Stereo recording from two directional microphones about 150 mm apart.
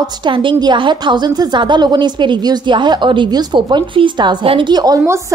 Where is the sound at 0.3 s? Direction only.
35° right (ahead or behind).